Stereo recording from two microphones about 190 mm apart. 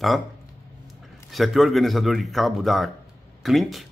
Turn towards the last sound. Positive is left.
turn(degrees=0)  # may be behind; listen again after turning